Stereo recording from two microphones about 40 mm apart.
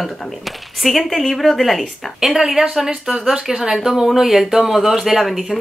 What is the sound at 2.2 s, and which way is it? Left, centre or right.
Speech, centre.